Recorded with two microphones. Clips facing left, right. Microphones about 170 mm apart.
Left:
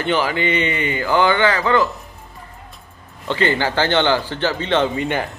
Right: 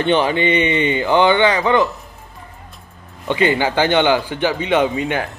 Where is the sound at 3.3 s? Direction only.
15° right (ahead or behind).